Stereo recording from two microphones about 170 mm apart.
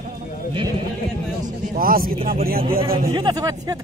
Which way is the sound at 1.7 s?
60° right (ahead or behind).